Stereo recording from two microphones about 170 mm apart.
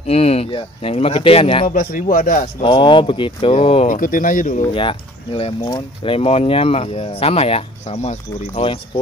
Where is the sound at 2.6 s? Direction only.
30° left (ahead or behind).